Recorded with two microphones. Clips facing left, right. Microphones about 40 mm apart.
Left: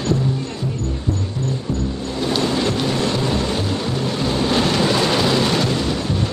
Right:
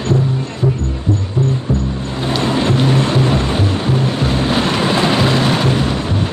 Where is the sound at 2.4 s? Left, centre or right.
Right.